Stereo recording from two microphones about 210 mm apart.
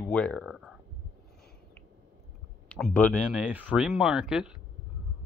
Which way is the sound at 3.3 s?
5° right (ahead or behind).